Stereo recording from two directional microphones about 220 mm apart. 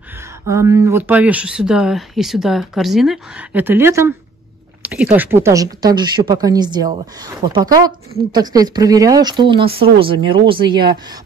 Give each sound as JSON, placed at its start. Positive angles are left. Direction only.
{"t": 0.5, "sound": "speech", "side_deg": -15}